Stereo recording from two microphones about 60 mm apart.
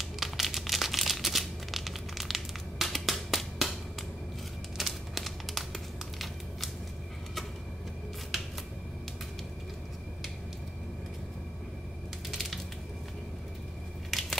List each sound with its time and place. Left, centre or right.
0.0 s crumpling: centre
4.7 s crumpling: centre
12.3 s crushing: centre
14.1 s crushing: centre